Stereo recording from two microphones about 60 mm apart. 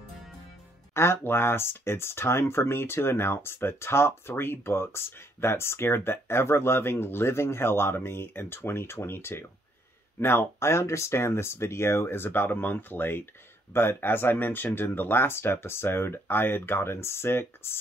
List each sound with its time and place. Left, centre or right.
0.9 s speech: left
12.2 s speech: left